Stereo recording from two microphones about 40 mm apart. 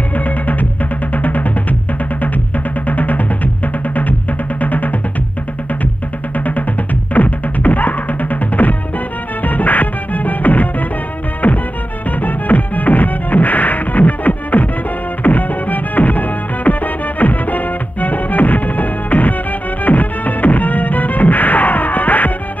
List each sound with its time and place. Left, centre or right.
0.1 s music: left
6.3 s music: left